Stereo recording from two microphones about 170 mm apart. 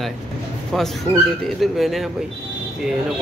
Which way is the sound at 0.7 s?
Centre (ahead or behind).